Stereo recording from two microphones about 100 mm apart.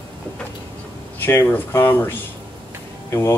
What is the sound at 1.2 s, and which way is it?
Speech, 20° left (ahead or behind).